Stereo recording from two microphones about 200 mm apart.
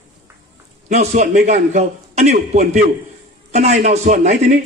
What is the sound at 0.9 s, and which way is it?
A man's voice, 35° right (ahead or behind).